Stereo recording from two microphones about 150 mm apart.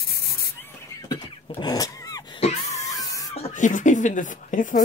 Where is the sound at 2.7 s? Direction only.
20° left (ahead or behind).